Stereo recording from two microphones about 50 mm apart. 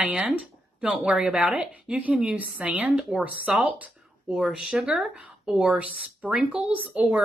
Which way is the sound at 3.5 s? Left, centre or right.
Centre.